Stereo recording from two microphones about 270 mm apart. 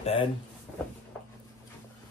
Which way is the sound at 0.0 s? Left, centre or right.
Left.